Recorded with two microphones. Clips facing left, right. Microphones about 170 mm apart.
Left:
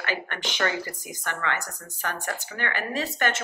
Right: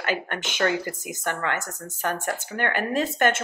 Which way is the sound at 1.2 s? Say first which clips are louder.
Right 2 dB; 45° right (ahead or behind).